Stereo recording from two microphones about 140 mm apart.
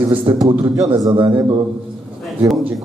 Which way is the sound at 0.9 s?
30° right (ahead or behind).